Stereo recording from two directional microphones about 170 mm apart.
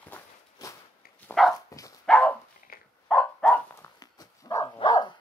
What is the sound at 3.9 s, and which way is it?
Dog, 20° left (ahead or behind).